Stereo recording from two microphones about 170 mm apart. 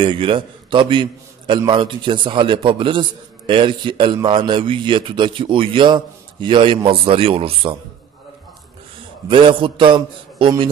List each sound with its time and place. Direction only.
0.0 s a man's voice: 30° right (ahead or behind)
9.3 s a man's voice: 30° right (ahead or behind)